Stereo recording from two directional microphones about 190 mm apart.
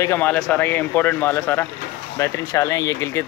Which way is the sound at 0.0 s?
10° left (ahead or behind).